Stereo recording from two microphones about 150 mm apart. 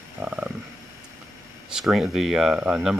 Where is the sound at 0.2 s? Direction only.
10° right (ahead or behind).